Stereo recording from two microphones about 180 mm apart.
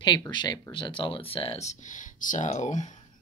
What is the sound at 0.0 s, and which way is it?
Speech, 25° left (ahead or behind).